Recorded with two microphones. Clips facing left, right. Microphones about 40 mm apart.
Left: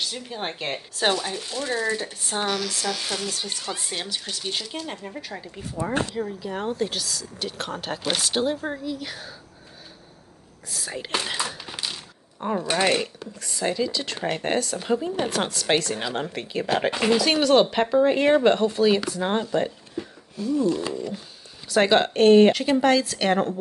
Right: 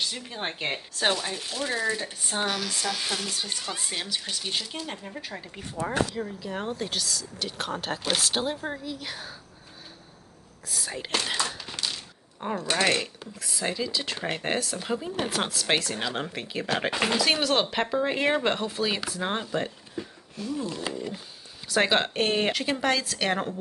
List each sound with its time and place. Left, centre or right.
0.0 s speech: centre
10.7 s speech: centre
11.2 s a sound: centre
12.5 s speech: centre